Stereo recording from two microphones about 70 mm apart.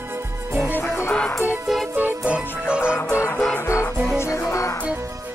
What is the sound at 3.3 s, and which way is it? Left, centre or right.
Music, centre.